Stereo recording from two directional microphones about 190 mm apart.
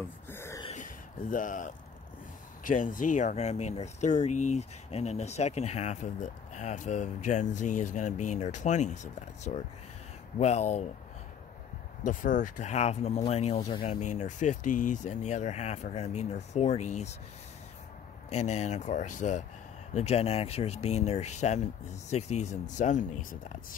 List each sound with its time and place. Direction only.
0.3 s a sound: 15° left (ahead or behind)
0.7 s speech: 45° left (ahead or behind)
12.0 s speech: 45° left (ahead or behind)
18.3 s speech: 35° left (ahead or behind)